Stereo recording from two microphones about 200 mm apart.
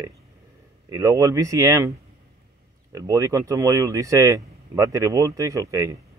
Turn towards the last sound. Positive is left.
turn(degrees=-15)  # may be behind; listen again after turning